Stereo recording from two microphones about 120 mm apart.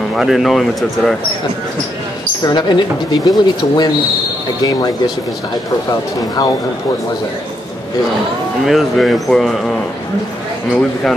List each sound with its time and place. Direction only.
0.1 s speech: centre (ahead or behind)
2.4 s speech: 40° left (ahead or behind)
8.6 s speech: centre (ahead or behind)